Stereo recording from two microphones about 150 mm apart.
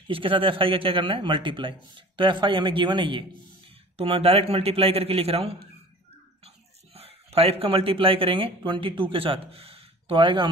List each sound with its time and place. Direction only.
0.1 s speech: 35° right (ahead or behind)